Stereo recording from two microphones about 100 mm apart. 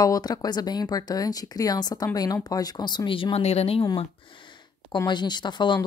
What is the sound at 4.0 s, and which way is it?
Speech, 55° left (ahead or behind).